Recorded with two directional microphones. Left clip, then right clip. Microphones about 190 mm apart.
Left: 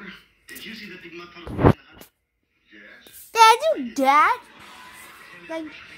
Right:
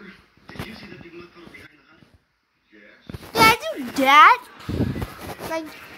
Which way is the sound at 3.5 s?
30° left (ahead or behind).